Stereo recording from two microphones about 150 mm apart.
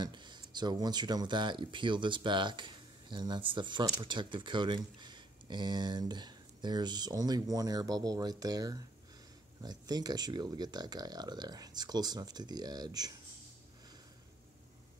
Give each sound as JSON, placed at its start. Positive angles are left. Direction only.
{"t": 0.0, "sound": "speech", "side_deg": -30}